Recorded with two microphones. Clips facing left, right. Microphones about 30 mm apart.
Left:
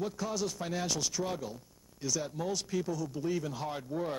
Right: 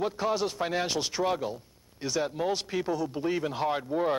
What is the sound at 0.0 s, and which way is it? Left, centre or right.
A man's voice, right.